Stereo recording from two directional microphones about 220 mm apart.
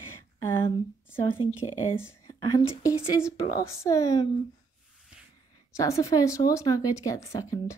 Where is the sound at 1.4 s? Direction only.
15° left (ahead or behind).